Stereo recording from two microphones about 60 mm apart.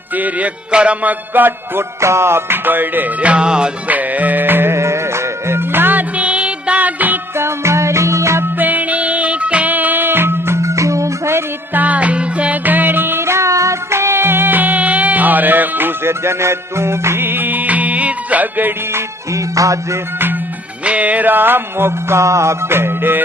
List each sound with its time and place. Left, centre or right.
0.2 s music: right
1.3 s music: right
2.0 s music: right; by 3.7 s centre
3.8 s music: right
7.3 s music: right
8.5 s music: right
11.7 s music: right
19.3 s music: right
20.8 s music: right
22.2 s music: right